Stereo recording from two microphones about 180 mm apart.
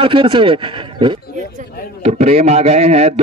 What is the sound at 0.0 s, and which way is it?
A man's voice, 30° right (ahead or behind).